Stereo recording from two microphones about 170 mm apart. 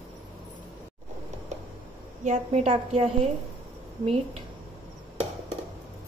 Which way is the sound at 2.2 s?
40° right (ahead or behind).